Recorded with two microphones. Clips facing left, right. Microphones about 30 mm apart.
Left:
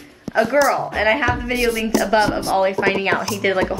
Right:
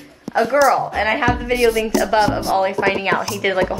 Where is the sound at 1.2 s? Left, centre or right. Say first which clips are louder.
Right 3 dB; centre.